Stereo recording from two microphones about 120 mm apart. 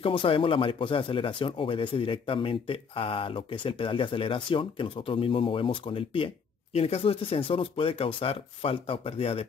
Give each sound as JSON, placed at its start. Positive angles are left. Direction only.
{"t": 0.0, "sound": "speech", "side_deg": 50}